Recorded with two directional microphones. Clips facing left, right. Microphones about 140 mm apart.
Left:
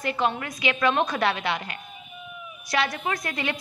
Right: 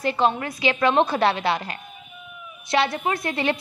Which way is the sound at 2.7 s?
30° right (ahead or behind).